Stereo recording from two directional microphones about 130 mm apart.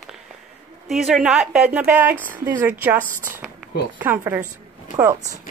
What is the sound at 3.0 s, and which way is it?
Speech, 90° right.